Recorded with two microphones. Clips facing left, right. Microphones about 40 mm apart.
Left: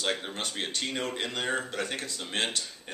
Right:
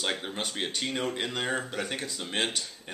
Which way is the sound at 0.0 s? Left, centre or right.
Centre.